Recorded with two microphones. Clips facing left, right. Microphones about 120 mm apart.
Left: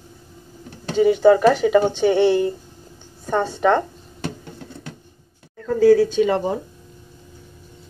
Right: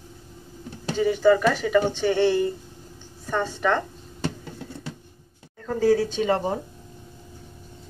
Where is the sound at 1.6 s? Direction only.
25° left (ahead or behind).